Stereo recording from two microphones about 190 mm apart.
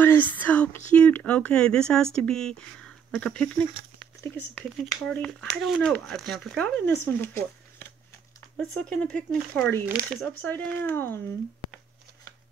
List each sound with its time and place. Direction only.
0.0 s speech: 10° left (ahead or behind)